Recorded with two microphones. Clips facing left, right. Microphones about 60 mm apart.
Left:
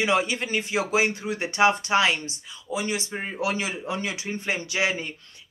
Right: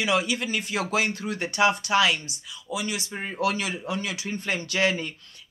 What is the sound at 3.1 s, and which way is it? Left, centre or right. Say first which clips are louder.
Speech: right 1 dB; centre.